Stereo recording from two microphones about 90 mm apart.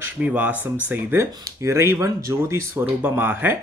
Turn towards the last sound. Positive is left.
turn(degrees=-20)  # may be behind; listen again after turning